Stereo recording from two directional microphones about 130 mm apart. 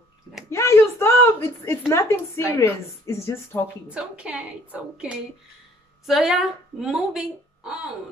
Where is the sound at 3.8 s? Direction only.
10° right (ahead or behind).